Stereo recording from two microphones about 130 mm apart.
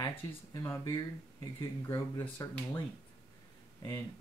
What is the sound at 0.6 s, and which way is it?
Speech, 25° left (ahead or behind).